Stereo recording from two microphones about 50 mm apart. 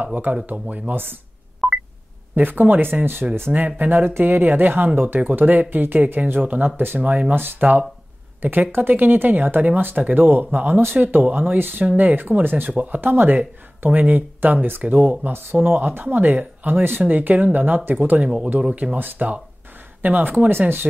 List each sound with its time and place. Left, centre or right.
0.0 s speech: right
2.3 s speech: right
7.0 s speech: right
13.0 s speech: right
18.9 s speech: right